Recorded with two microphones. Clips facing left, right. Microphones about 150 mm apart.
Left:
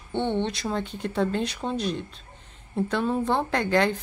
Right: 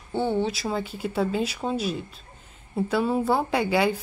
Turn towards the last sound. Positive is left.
turn(degrees=-10)  # may be behind; listen again after turning